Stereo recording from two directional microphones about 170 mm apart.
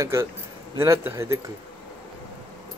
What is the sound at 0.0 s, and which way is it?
Speech, 15° right (ahead or behind).